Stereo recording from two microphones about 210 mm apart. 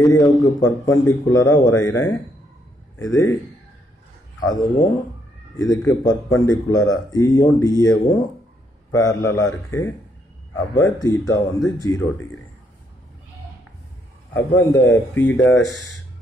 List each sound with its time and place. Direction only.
0.0 s a man's voice: 15° left (ahead or behind)
4.4 s speech: 15° left (ahead or behind)
5.7 s a man's voice: 15° left (ahead or behind)
14.3 s a man's voice: 10° left (ahead or behind)